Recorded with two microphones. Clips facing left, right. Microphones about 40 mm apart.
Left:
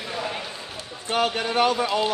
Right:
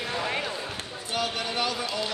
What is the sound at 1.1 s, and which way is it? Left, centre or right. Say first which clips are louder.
Speech: left 6 dB; left.